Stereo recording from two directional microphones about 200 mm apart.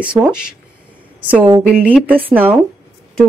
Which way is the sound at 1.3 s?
15° right (ahead or behind).